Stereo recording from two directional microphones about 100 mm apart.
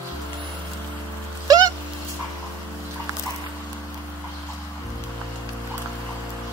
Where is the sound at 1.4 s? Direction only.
35° right (ahead or behind).